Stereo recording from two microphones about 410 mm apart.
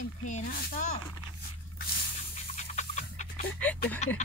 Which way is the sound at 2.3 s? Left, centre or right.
Centre.